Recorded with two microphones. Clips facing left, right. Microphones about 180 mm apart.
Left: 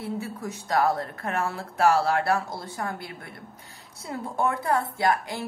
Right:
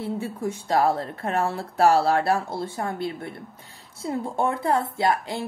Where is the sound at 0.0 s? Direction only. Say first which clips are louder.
Right 4 dB; 25° right (ahead or behind).